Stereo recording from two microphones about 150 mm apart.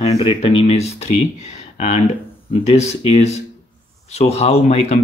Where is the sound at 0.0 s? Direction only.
40° left (ahead or behind).